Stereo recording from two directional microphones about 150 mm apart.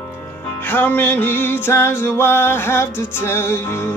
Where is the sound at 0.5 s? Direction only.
10° left (ahead or behind).